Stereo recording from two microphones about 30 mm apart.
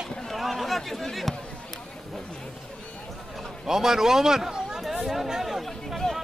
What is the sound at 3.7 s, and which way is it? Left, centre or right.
A man's voice, centre.